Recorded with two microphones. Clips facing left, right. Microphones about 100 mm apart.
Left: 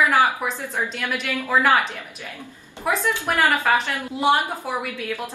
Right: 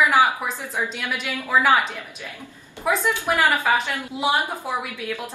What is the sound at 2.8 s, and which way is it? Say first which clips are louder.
Speech: right 1 dB; centre (ahead or behind).